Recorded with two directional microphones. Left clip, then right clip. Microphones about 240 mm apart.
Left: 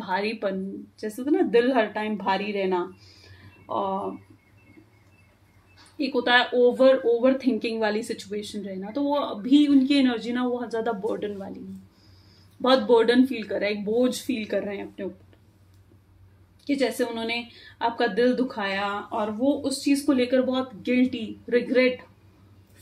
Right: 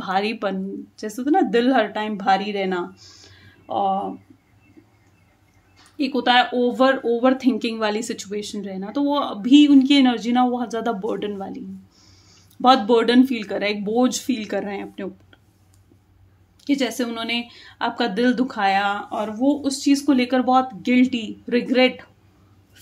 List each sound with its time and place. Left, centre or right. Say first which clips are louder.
0.0 s speech: right 4 dB; right
5.9 s speech: right 3 dB; right
12.6 s speech: right 3 dB; right
16.6 s speech: right 2 dB; right